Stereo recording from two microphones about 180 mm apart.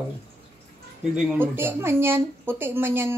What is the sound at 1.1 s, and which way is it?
A man's voice, 5° right (ahead or behind).